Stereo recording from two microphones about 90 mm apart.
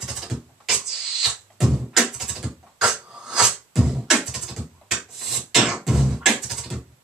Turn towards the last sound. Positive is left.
turn(degrees=-5)  # may be behind; listen again after turning